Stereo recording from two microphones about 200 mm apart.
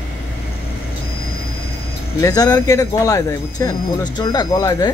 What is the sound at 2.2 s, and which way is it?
Speech, 20° left (ahead or behind).